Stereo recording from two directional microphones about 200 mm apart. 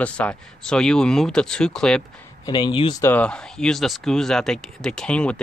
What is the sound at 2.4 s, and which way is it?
Speech, 20° left (ahead or behind).